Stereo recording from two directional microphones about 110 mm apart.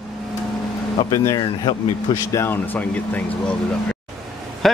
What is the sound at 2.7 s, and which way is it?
Speech, 10° left (ahead or behind).